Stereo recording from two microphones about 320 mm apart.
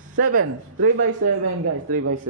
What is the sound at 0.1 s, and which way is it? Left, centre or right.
Speech, right.